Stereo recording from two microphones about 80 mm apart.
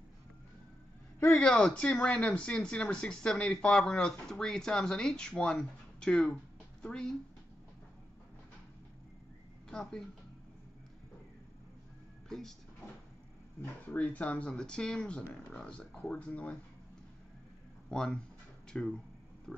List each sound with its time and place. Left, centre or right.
1.3 s a woman's voice: centre
9.7 s speech: centre
12.3 s speech: centre
13.6 s speech: left
17.8 s speech: centre